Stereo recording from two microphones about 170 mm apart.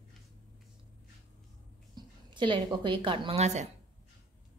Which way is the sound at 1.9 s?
30° right (ahead or behind).